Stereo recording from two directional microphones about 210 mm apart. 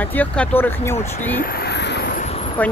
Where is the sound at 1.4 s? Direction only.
45° left (ahead or behind).